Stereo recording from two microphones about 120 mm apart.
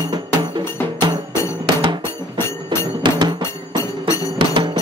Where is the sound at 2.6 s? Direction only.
40° right (ahead or behind).